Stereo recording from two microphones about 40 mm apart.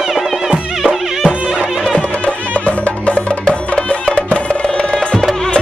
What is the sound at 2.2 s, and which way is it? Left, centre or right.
Music, left.